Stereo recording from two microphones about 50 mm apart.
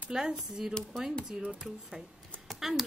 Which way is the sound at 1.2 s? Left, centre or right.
Right.